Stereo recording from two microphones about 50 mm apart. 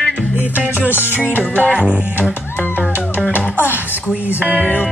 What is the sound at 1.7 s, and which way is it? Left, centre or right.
Music, centre.